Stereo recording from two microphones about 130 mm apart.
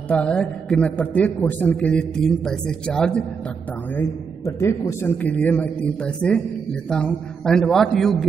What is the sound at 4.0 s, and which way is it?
A man's voice, 25° left (ahead or behind).